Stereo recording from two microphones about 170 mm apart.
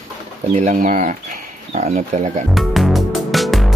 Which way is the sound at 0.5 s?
50° right (ahead or behind).